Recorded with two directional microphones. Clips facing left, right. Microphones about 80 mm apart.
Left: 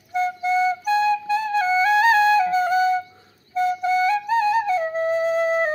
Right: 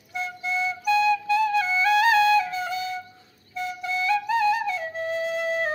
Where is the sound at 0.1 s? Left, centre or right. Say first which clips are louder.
Left 8 dB; left.